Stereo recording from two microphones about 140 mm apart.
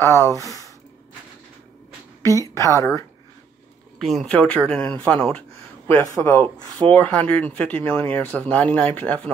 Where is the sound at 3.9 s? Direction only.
Centre (ahead or behind).